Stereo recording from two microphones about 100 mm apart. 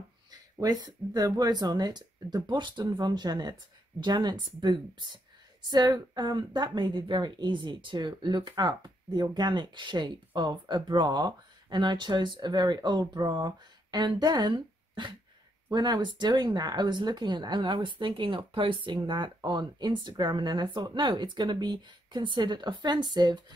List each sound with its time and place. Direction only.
0.3 s a woman's voice: 40° right (ahead or behind)